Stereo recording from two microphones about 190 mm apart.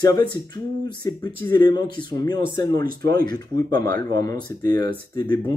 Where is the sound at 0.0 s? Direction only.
20° left (ahead or behind).